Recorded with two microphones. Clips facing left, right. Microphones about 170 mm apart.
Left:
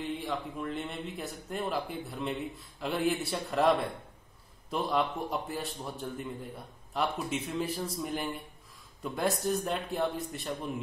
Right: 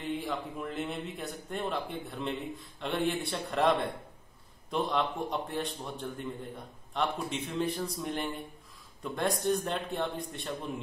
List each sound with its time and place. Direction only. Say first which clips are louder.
0.0 s speech: even; centre (ahead or behind)